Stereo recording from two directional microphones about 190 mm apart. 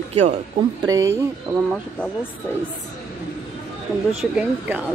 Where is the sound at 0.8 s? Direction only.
15° right (ahead or behind).